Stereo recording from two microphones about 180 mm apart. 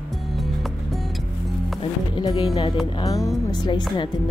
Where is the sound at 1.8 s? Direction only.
25° left (ahead or behind).